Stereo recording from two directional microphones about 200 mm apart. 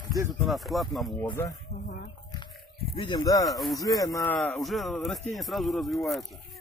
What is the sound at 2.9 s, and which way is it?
Speech, 25° left (ahead or behind).